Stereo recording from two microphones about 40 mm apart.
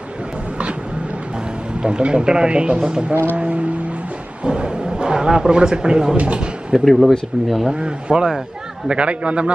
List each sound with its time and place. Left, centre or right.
1.8 s speech: right
3.3 s speech: right
6.1 s speech: right
6.8 s speech: centre
7.6 s speech: right